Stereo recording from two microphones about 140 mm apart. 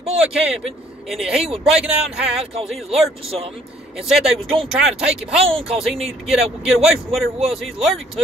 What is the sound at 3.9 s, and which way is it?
Speech, 5° right (ahead or behind).